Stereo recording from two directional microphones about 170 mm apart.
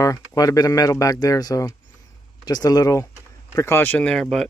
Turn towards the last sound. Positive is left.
turn(degrees=5)  # may be behind; listen again after turning